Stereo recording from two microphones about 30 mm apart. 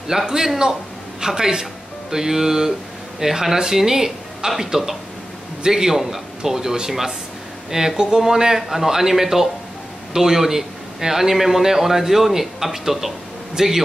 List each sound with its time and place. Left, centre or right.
0.1 s a man's voice: centre